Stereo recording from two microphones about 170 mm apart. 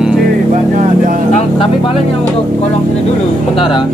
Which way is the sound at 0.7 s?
50° right (ahead or behind).